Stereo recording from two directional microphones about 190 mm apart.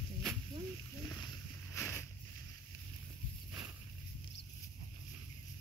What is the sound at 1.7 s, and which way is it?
Boat, 10° left (ahead or behind).